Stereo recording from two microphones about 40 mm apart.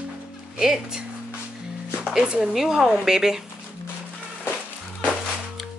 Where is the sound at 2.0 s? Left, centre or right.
Right.